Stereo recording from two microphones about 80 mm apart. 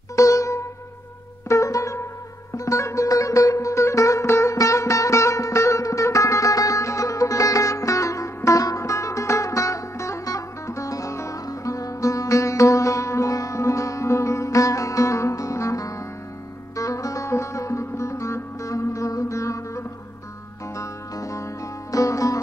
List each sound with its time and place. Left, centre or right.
0.1 s music: left
21.9 s sitar: left